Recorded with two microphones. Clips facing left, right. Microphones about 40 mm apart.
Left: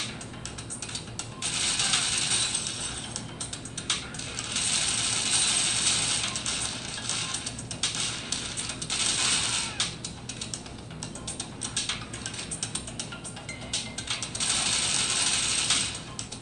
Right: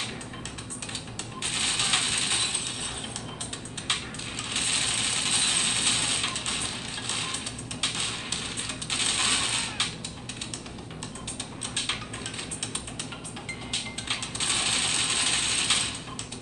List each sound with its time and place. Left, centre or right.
1.4 s mechanisms: right
4.6 s mechanisms: right
7.8 s music: right
8.9 s mechanisms: right
14.0 s coin: right